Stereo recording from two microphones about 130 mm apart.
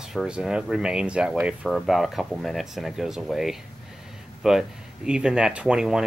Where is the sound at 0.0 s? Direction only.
5° right (ahead or behind).